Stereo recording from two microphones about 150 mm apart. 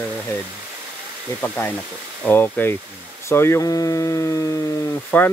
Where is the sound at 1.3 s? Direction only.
10° left (ahead or behind).